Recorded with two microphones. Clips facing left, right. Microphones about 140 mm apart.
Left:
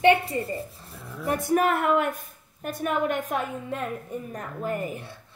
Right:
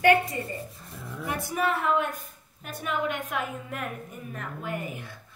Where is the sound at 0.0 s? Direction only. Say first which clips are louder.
Left 1 dB; 25° left (ahead or behind).